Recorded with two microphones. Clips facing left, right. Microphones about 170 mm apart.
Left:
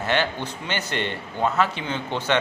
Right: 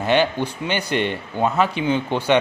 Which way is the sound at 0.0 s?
15° right (ahead or behind).